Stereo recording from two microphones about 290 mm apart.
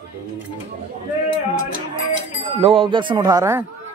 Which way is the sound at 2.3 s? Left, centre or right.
Centre.